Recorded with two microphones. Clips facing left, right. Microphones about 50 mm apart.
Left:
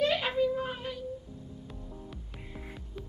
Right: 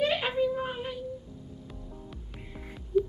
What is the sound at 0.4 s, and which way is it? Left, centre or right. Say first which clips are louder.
Child singing: right 1 dB; centre.